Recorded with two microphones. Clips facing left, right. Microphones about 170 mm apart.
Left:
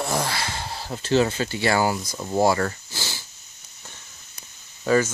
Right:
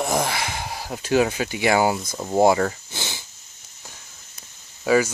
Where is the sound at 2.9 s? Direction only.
20° right (ahead or behind).